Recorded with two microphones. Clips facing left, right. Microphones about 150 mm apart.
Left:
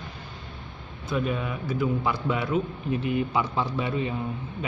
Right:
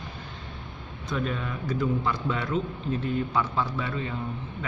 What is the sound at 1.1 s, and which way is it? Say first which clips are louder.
A man's voice: left 3 dB; 10° left (ahead or behind).